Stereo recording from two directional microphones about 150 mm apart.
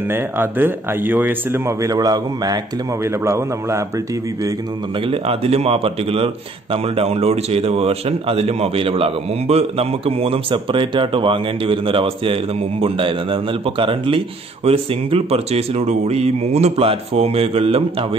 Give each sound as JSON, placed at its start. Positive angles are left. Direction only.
{"t": 0.1, "sound": "speech", "side_deg": -15}
{"t": 5.0, "sound": "speech", "side_deg": -40}